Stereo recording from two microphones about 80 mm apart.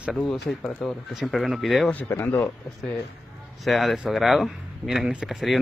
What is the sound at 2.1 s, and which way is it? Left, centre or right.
Speech, left.